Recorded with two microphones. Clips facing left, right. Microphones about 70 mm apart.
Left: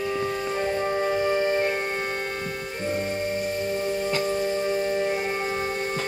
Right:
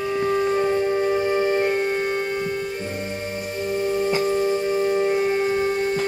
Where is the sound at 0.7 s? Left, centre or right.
Centre.